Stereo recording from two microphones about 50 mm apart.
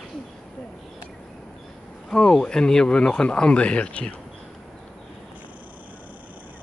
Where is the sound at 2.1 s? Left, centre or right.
Centre.